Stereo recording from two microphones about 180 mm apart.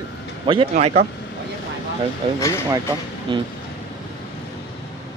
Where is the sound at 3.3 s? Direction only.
25° right (ahead or behind).